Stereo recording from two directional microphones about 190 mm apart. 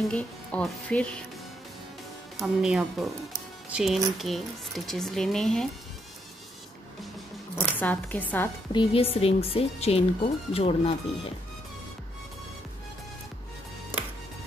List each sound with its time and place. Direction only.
0.1 s speech: 5° left (ahead or behind)
2.4 s speech: centre (ahead or behind)
7.6 s speech: 10° left (ahead or behind)
8.7 s speech: 30° left (ahead or behind)